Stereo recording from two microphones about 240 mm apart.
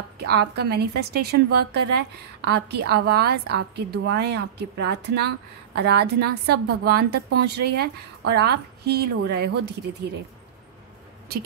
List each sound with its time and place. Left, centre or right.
0.3 s a woman's voice: right